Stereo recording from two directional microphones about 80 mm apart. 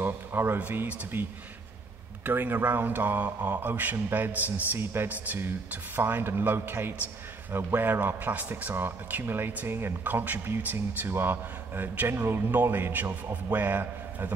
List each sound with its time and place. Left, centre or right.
0.0 s speech: right
2.2 s speech: right